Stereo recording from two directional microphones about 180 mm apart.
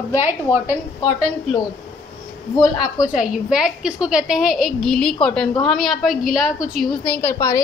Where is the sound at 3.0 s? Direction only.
5° right (ahead or behind).